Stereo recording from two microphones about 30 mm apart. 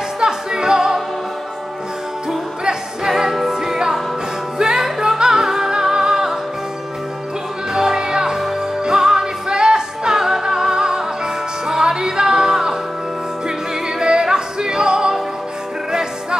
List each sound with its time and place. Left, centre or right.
0.2 s music: right
3.4 s music: centre
7.7 s music: right
13.9 s music: right